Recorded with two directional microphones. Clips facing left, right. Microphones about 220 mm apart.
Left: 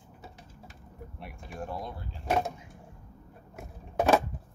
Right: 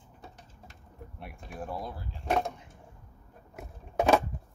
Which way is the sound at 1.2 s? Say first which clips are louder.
Left 1 dB; centre (ahead or behind).